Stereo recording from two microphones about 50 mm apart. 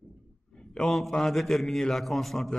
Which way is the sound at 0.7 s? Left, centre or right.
Centre.